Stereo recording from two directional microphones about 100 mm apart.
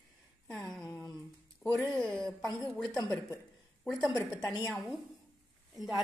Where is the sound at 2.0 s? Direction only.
10° left (ahead or behind).